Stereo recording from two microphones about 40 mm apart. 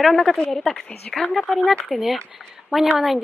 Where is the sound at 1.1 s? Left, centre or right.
Left.